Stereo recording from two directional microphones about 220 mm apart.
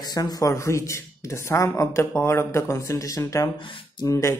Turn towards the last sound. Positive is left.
turn(degrees=15)  # may be behind; listen again after turning